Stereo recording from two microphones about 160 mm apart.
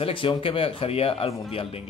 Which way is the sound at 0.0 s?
35° left (ahead or behind).